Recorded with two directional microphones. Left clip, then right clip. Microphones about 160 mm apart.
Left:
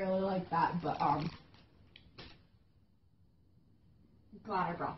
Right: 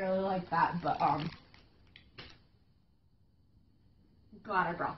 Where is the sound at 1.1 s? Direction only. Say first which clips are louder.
Right 1 dB; centre (ahead or behind).